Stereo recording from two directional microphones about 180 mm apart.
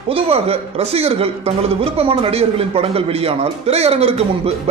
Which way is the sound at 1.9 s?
30° right (ahead or behind).